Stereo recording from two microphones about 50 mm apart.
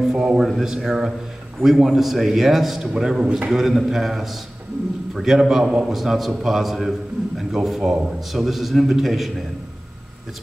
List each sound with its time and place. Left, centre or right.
0.0 s a man's voice: centre
3.5 s a man's voice: centre